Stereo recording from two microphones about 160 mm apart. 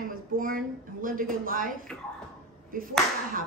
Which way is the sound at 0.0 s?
60° right (ahead or behind).